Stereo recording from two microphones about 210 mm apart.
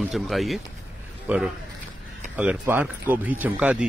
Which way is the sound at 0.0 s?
Centre (ahead or behind).